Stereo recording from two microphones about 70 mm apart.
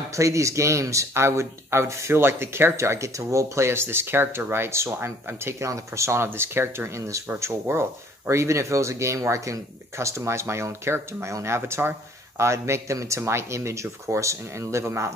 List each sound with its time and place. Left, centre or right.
0.2 s speech: right